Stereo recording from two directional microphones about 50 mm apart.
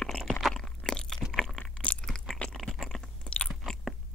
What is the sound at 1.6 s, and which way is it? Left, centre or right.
Crunch, left.